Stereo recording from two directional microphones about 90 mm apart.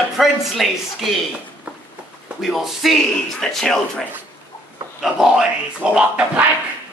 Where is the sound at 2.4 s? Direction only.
5° right (ahead or behind).